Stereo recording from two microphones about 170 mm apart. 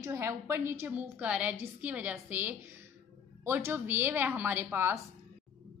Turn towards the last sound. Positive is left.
turn(degrees=-15)  # may be behind; listen again after turning